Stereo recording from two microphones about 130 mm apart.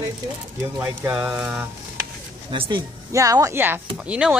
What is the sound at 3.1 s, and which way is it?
Speech, 25° right (ahead or behind).